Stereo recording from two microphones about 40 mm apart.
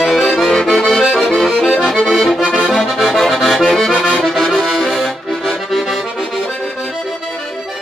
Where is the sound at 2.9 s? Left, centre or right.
Centre.